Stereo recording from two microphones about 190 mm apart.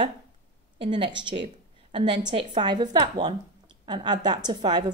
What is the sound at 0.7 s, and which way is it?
A woman's voice, 25° right (ahead or behind).